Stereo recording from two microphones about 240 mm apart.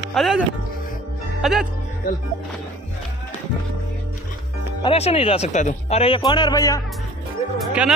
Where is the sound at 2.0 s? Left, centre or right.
Left.